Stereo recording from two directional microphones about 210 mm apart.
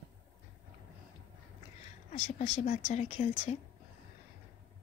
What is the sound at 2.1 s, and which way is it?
Speech, 30° left (ahead or behind).